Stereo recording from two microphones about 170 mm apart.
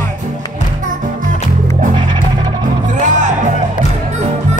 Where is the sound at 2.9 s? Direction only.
45° right (ahead or behind).